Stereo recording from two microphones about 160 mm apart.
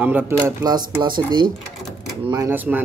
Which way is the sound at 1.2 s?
25° right (ahead or behind).